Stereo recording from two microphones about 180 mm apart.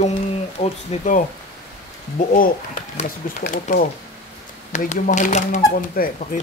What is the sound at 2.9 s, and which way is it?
Speech, 45° left (ahead or behind).